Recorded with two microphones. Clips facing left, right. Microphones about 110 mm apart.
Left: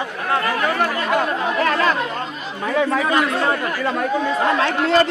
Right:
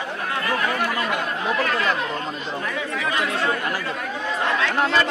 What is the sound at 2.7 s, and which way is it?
Speech, 50° left (ahead or behind).